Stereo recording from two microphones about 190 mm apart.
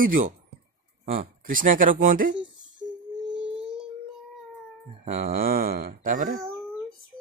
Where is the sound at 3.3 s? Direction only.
5° right (ahead or behind).